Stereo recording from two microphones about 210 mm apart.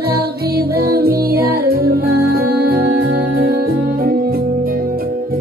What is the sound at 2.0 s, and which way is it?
Music, 90° right.